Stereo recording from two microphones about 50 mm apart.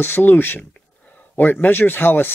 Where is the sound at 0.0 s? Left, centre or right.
Left.